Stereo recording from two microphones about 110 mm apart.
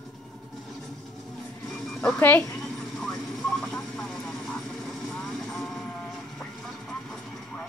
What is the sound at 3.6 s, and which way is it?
Vehicle, 10° left (ahead or behind).